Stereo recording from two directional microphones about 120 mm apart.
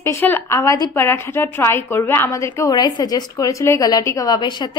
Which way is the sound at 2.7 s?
35° left (ahead or behind).